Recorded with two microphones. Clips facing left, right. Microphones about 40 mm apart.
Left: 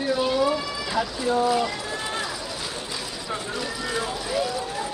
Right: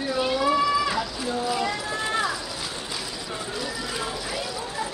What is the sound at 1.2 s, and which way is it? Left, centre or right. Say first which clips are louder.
Speech: left 9 dB; left.